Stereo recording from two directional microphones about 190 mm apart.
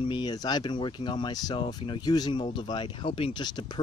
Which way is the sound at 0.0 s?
25° left (ahead or behind).